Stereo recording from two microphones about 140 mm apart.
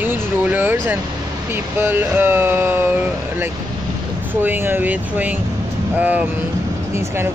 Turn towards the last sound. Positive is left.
turn(degrees=-10)  # may be behind; listen again after turning